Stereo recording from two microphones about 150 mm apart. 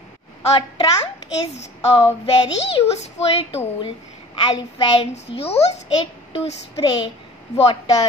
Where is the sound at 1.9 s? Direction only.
35° left (ahead or behind).